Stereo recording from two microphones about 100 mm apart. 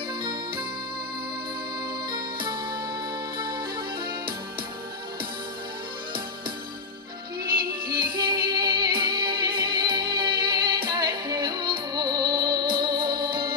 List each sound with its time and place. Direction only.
2.0 s music: 50° right (ahead or behind)
7.8 s music: 50° right (ahead or behind)